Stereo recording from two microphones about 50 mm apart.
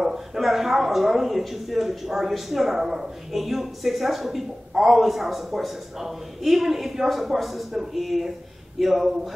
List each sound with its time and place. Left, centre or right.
0.0 s speech: centre